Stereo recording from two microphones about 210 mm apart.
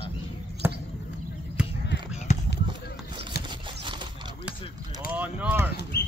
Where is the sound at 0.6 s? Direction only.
10° right (ahead or behind).